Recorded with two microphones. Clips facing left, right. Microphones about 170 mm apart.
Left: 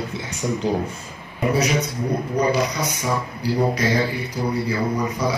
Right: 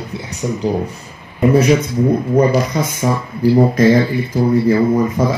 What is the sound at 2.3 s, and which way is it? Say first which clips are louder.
Speech: right 5 dB; 50° right (ahead or behind).